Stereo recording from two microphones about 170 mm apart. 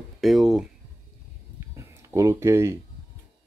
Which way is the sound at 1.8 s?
15° right (ahead or behind).